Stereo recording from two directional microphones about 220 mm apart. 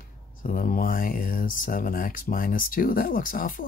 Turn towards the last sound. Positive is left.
turn(degrees=40)  # may be behind; listen again after turning